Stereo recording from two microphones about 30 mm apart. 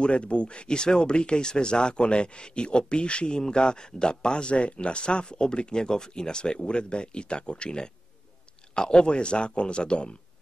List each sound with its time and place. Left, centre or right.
0.0 s speech: left